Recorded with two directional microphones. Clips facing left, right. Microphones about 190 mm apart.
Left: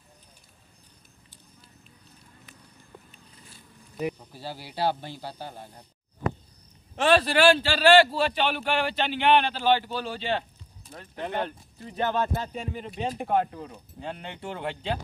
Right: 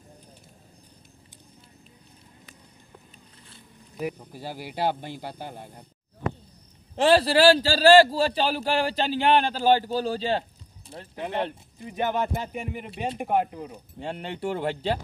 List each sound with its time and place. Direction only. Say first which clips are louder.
4.3 s speech: right 2 dB; 15° right (ahead or behind)
7.0 s a man's voice: right 2 dB; 30° right (ahead or behind)
11.8 s speech: even; 15° right (ahead or behind)
13.9 s a man's voice: right 4 dB; 30° right (ahead or behind)